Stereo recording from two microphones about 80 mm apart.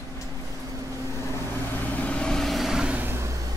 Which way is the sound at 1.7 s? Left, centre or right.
Left.